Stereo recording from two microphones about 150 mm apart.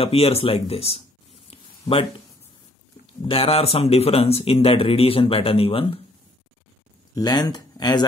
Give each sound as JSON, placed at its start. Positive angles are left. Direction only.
{"t": 0.0, "sound": "speech", "side_deg": 40}
{"t": 1.5, "sound": "a sound", "side_deg": 35}
{"t": 3.2, "sound": "speech", "side_deg": 40}
{"t": 7.2, "sound": "speech", "side_deg": 25}